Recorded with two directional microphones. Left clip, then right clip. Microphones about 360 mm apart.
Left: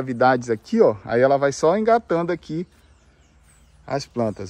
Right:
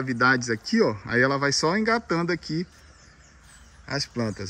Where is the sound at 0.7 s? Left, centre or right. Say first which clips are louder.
Left 7 dB; centre.